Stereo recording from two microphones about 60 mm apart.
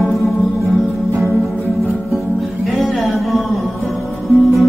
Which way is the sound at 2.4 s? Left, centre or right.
Centre.